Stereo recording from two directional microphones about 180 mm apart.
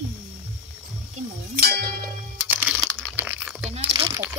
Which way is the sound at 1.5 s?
60° right (ahead or behind).